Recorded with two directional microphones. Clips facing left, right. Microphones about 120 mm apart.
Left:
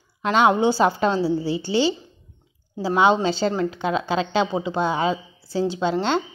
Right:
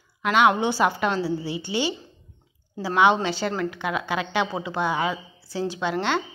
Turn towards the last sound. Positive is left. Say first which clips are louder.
# left 3 dB
turn(degrees=30)  # may be behind; listen again after turning